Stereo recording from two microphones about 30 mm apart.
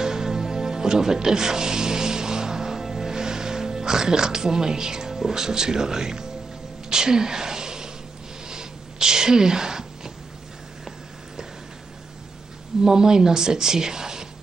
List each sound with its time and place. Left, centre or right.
0.0 s music: centre
6.9 s a sound: right
12.8 s a woman's voice: right